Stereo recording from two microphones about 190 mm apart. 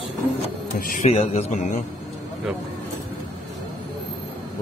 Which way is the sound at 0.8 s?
45° left (ahead or behind).